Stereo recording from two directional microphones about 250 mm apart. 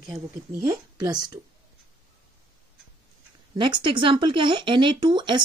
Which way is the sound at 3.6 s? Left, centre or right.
Centre.